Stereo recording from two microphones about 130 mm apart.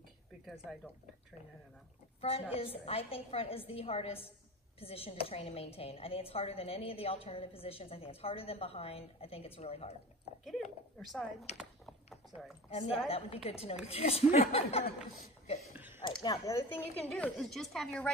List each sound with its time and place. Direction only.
2.5 s a woman's voice: 45° left (ahead or behind)
10.4 s speech: centre (ahead or behind)
12.6 s a woman's voice: 50° left (ahead or behind)
15.7 s a sound: 15° right (ahead or behind)
16.1 s speech: 30° left (ahead or behind)
17.0 s speech: 5° left (ahead or behind)